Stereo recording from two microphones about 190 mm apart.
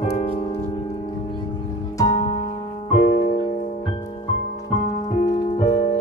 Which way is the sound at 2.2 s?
30° left (ahead or behind).